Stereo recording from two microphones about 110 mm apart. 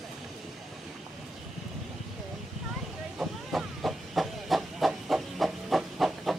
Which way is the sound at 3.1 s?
Centre (ahead or behind).